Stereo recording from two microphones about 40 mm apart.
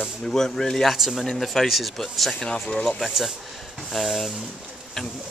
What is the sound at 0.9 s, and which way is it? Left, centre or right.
Speech, centre.